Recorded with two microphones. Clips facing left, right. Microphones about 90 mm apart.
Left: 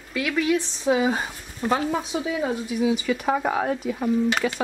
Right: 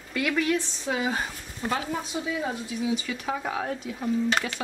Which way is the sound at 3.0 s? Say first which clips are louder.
Left 7 dB; 60° left (ahead or behind).